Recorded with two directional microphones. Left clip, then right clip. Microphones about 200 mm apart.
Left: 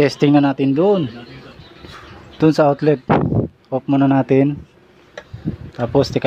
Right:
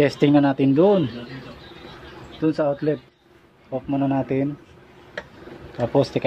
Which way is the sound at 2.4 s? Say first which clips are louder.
Left 8 dB; 30° left (ahead or behind).